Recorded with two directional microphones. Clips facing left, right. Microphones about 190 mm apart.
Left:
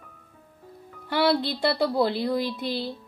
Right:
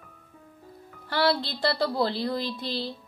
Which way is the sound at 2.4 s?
55° left (ahead or behind).